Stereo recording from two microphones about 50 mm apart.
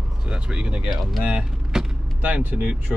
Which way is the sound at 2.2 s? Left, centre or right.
Right.